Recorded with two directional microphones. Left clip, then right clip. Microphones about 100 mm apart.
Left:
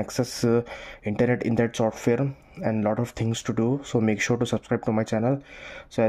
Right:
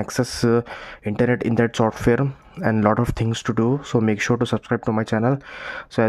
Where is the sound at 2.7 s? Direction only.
55° right (ahead or behind).